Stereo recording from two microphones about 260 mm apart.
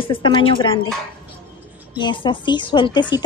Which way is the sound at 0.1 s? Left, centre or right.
Centre.